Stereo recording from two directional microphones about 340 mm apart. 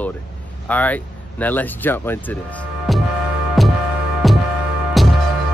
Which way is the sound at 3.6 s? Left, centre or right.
Centre.